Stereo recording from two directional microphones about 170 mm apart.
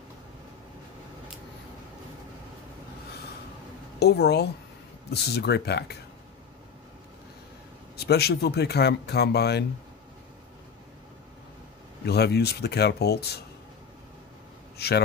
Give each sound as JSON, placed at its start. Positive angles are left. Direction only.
{"t": 4.0, "sound": "speech", "side_deg": 75}
{"t": 8.0, "sound": "speech", "side_deg": 70}
{"t": 12.1, "sound": "speech", "side_deg": 70}
{"t": 14.8, "sound": "speech", "side_deg": 70}